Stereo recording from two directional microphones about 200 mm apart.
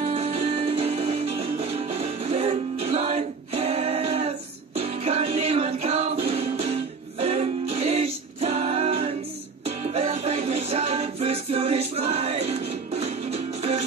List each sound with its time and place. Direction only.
0.1 s music: 30° right (ahead or behind)